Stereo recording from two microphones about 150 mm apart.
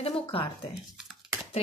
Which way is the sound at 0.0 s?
35° left (ahead or behind).